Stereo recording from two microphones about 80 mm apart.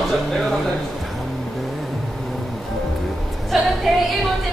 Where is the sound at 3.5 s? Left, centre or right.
Centre.